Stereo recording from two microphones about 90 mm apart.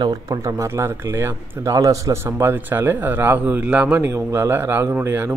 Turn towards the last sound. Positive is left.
turn(degrees=-25)  # may be behind; listen again after turning